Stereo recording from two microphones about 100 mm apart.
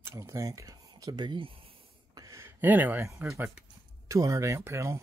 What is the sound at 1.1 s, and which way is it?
Speech, 55° right (ahead or behind).